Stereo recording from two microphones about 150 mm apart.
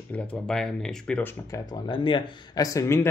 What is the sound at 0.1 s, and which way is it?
Speech, 5° left (ahead or behind).